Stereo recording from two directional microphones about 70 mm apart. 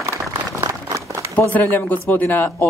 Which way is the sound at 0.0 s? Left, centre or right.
Right.